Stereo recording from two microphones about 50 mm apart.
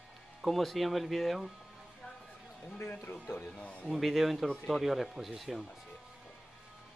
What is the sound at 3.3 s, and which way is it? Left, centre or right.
Speech, left.